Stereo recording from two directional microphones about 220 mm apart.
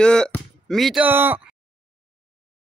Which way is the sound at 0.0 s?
5° left (ahead or behind).